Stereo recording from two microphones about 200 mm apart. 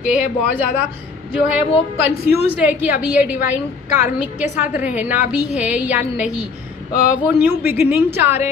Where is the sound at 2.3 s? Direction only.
30° left (ahead or behind).